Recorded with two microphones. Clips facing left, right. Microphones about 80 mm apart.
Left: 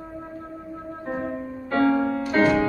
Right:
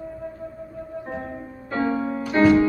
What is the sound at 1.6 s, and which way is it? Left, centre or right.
Music, centre.